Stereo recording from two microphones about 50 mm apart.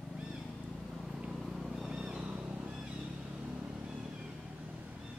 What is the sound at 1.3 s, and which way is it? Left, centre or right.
Vehicle, centre.